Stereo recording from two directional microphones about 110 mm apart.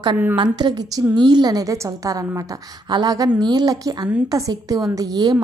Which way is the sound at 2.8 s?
40° right (ahead or behind).